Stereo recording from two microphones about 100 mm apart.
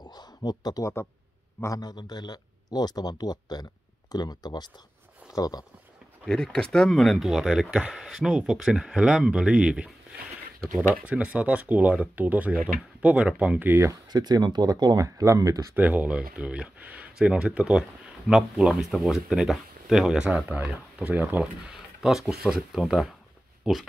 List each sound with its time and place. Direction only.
0.0 s a sound: 45° left (ahead or behind)
1.6 s speech: 35° left (ahead or behind)
6.2 s speech: 5° left (ahead or behind); by 13.9 s 25° right (ahead or behind)
14.0 s speech: 45° right (ahead or behind)
15.7 s speech: 15° right (ahead or behind)
21.7 s speech: 5° right (ahead or behind)